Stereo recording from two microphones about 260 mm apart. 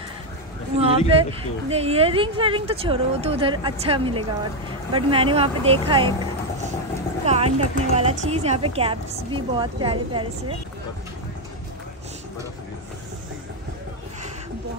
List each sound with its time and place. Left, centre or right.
0.7 s a woman's voice: right
7.2 s speech: right